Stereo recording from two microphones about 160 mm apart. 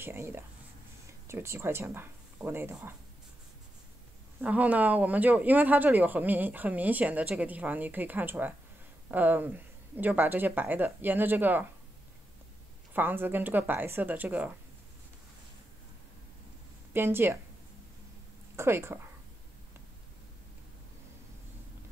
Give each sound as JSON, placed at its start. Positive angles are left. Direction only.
{"t": 0.0, "sound": "speech", "side_deg": -15}
{"t": 4.4, "sound": "speech", "side_deg": -10}
{"t": 12.9, "sound": "speech", "side_deg": -10}
{"t": 16.9, "sound": "speech", "side_deg": -15}
{"t": 18.6, "sound": "speech", "side_deg": -15}